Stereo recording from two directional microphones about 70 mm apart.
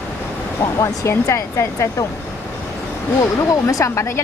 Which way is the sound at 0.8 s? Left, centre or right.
Left.